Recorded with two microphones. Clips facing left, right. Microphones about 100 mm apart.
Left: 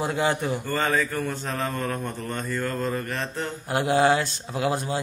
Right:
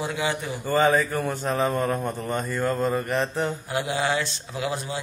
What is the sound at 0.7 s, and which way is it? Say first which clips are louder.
A man's voice: right 7 dB; 15° right (ahead or behind).